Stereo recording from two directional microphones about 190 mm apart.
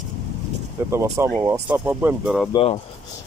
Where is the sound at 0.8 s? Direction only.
15° right (ahead or behind).